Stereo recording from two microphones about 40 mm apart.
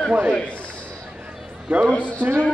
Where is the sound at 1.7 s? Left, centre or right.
Right.